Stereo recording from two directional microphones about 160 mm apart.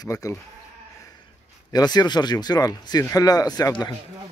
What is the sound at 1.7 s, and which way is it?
Speech, 25° left (ahead or behind).